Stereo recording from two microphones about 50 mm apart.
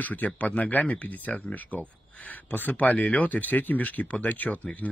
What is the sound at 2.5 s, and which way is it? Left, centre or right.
Speech, left.